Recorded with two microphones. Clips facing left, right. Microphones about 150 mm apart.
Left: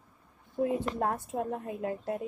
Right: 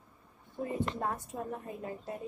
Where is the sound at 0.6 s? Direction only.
90° left.